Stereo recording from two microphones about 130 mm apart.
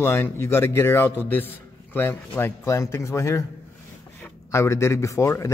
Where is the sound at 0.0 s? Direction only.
20° left (ahead or behind).